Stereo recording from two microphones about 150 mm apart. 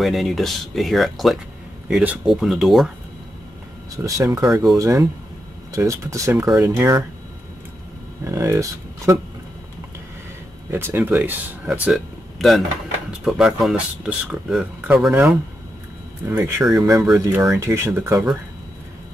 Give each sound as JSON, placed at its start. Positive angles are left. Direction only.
{"t": 0.0, "sound": "speech", "side_deg": 0}
{"t": 3.9, "sound": "speech", "side_deg": -20}
{"t": 4.5, "sound": "speech", "side_deg": 0}
{"t": 4.7, "sound": "speech", "side_deg": -20}
{"t": 8.2, "sound": "speech", "side_deg": -20}
{"t": 10.7, "sound": "speech", "side_deg": -15}
{"t": 16.9, "sound": "speech", "side_deg": 0}
{"t": 17.2, "sound": "speech", "side_deg": -25}